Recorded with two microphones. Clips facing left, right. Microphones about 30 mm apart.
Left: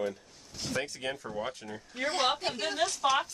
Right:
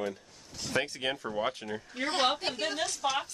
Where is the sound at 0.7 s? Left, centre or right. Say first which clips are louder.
Right 3 dB; right.